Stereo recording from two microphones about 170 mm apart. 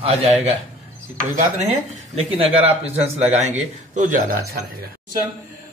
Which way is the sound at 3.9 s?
50° right (ahead or behind).